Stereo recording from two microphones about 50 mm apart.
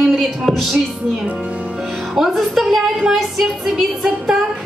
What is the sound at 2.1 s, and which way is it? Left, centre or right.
A woman's voice, centre.